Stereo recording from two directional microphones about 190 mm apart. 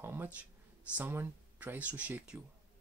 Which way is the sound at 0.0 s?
10° right (ahead or behind).